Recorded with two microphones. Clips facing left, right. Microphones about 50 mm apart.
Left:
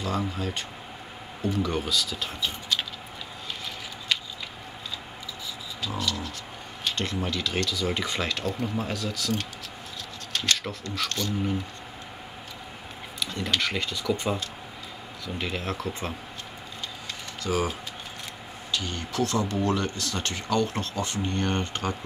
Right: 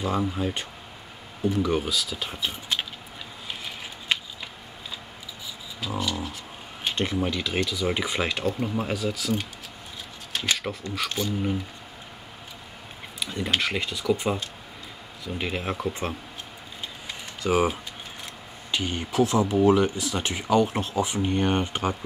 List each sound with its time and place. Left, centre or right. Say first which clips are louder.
0.0 s speech: right 3 dB; centre
1.4 s speech: right 3 dB; centre
4.1 s a sound: right 2 dB; right
5.8 s speech: right 2 dB; centre
13.2 s speech: right 1 dB; centre
17.4 s speech: right 5 dB; centre